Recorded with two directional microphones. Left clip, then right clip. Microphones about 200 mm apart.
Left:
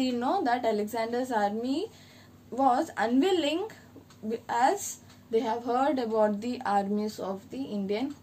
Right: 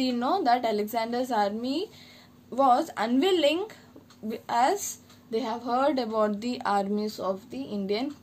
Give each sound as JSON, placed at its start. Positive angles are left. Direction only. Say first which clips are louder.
{"t": 0.0, "sound": "a woman's voice", "louder": "right 2 dB", "side_deg": -40}